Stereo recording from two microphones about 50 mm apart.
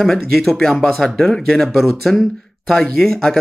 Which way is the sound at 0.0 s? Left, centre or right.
Centre.